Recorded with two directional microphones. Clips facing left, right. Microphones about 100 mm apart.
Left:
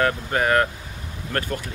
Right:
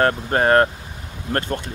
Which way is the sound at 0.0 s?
40° right (ahead or behind).